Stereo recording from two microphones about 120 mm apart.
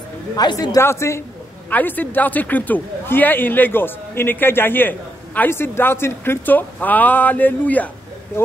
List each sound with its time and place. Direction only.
0.4 s a woman's voice: 35° left (ahead or behind); by 7.9 s 15° left (ahead or behind)